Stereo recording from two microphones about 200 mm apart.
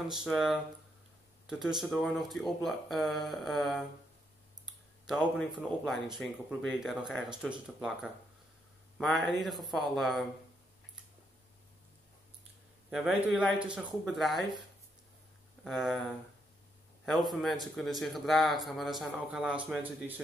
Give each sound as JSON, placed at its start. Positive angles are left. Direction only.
{"t": 0.1, "sound": "a man's voice", "side_deg": 0}
{"t": 5.0, "sound": "a man's voice", "side_deg": 0}
{"t": 12.9, "sound": "a man's voice", "side_deg": 0}
{"t": 15.6, "sound": "a man's voice", "side_deg": 0}